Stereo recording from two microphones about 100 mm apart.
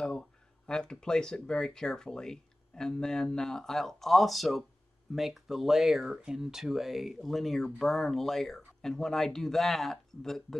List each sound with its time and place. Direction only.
0.0 s speech: 5° left (ahead or behind)